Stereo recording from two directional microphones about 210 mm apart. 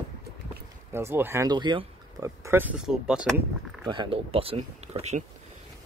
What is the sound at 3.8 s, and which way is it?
Speech, 20° right (ahead or behind).